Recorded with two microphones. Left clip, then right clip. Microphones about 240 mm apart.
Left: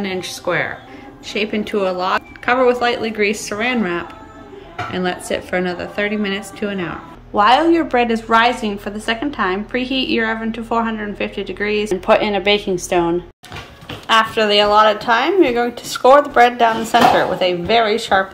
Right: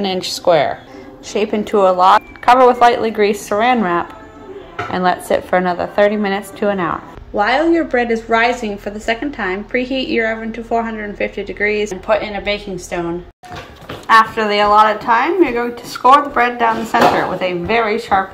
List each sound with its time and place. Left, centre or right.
0.0 s a woman's voice: centre
12.1 s a woman's voice: centre